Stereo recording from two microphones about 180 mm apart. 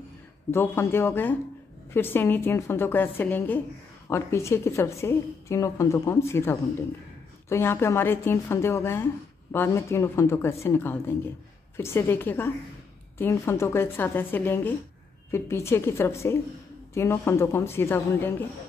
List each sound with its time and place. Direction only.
0.5 s a woman's voice: 15° left (ahead or behind)